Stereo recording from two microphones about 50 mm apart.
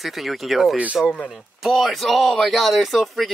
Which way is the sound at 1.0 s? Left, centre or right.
Centre.